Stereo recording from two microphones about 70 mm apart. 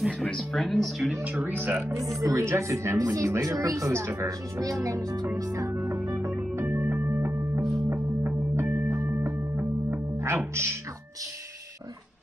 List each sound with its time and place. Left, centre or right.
0.4 s speech: centre
1.2 s speech: right
2.0 s speech: centre
2.4 s speech: right
4.6 s speech: right
5.8 s music: right
6.5 s music: right
6.8 s music: right